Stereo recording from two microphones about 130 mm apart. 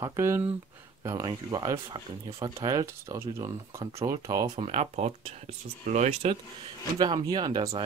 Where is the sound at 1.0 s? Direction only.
30° right (ahead or behind).